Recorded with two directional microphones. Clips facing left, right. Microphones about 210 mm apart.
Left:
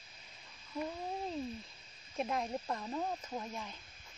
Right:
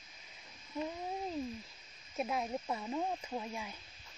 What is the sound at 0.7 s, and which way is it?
Speech, 5° right (ahead or behind).